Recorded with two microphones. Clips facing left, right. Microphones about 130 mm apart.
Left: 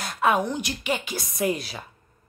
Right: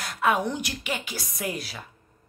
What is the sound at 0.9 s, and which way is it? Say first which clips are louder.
Speech: left 4 dB; 20° left (ahead or behind).